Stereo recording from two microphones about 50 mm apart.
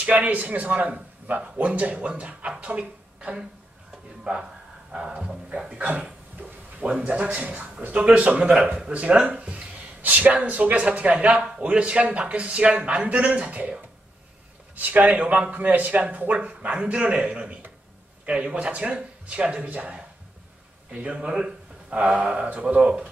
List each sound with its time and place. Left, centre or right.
0.0 s speech: right; by 5.8 s centre
5.8 s speech: right
22.5 s speech: right
22.8 s speech: centre